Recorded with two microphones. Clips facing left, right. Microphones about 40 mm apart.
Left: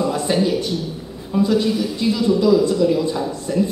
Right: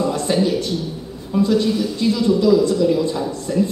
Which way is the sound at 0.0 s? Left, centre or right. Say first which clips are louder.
Even; centre.